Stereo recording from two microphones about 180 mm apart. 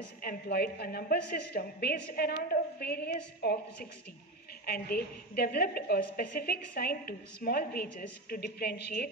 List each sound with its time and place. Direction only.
0.2 s a woman's voice: 60° left (ahead or behind)